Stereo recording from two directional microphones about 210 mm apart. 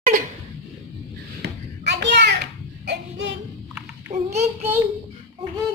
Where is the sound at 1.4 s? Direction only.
55° right (ahead or behind).